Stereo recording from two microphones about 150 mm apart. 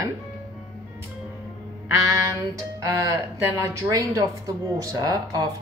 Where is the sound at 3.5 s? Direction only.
20° right (ahead or behind).